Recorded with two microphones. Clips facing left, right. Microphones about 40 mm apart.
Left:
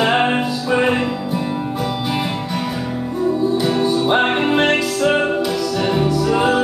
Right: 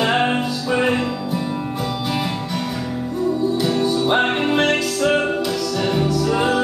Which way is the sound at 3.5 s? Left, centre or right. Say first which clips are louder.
Left 2 dB; centre.